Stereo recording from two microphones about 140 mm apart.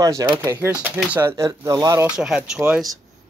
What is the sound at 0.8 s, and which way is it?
Speech, 15° right (ahead or behind).